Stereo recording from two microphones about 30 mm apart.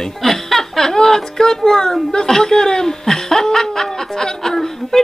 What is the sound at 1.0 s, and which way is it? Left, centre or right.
Speech, centre.